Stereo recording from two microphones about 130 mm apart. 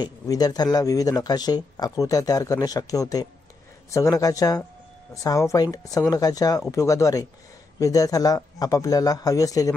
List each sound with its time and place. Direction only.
0.0 s speech: 30° left (ahead or behind)